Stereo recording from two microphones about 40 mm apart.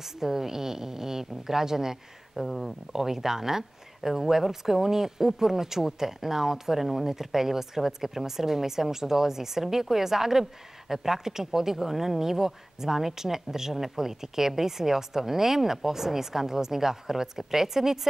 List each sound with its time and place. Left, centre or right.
0.0 s speech: centre
2.3 s speech: centre